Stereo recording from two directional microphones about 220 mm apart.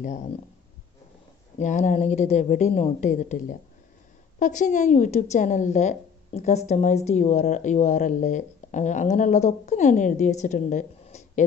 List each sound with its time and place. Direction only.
0.0 s a woman's voice: 35° left (ahead or behind)
1.6 s a woman's voice: 35° left (ahead or behind)